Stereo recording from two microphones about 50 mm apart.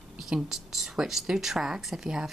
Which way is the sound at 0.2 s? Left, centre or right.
Centre.